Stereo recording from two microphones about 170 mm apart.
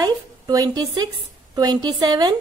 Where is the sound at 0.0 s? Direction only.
20° right (ahead or behind).